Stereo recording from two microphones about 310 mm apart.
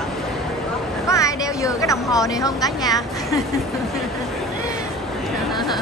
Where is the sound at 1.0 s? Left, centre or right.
Centre.